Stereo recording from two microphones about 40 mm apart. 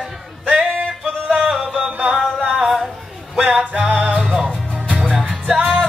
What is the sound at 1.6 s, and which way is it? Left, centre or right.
Music, centre.